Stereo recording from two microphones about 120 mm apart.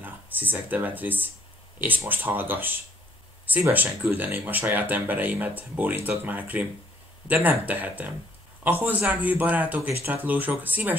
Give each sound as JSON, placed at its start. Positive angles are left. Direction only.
{"t": 0.0, "sound": "speech", "side_deg": -15}